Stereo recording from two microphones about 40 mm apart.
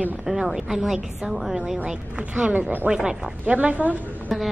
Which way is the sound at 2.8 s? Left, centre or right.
Centre.